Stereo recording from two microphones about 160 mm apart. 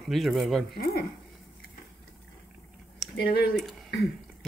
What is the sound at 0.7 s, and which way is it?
Speech, 70° left (ahead or behind).